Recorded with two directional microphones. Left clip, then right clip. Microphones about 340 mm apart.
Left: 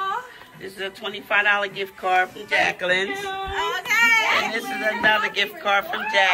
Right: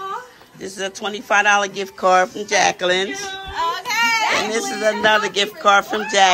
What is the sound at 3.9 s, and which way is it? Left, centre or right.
Children playing, right.